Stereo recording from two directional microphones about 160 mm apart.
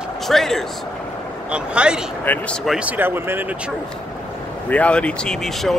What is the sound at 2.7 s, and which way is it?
Speech, 10° right (ahead or behind).